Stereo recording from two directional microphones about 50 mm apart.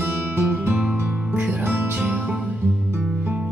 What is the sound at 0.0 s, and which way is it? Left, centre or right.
Music, right.